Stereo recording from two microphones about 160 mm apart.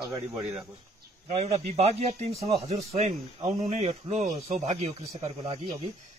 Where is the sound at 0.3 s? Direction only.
Centre (ahead or behind).